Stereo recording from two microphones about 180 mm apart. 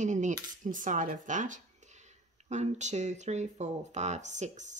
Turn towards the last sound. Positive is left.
turn(degrees=-40)  # may be behind; listen again after turning